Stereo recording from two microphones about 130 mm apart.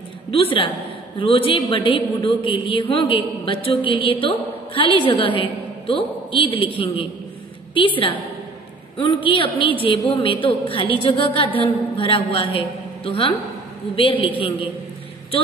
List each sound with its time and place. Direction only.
0.3 s a woman's voice: 45° left (ahead or behind)